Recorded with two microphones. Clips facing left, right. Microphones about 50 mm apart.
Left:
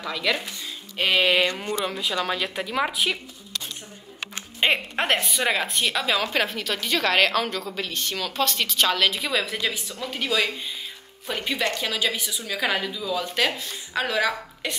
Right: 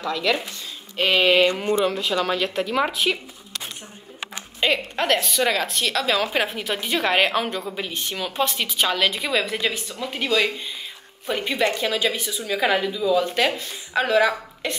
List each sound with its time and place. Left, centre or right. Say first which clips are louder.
0.0 s speech: right 3 dB; centre
1.5 s speech: right 6 dB; right
1.9 s speech: right 4 dB; centre
4.6 s a woman's voice: right 1 dB; left
6.2 s a woman's voice: right 1 dB; centre